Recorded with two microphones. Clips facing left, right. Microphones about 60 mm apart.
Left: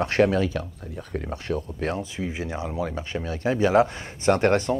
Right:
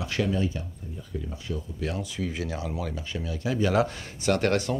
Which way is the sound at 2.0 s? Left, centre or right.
Left.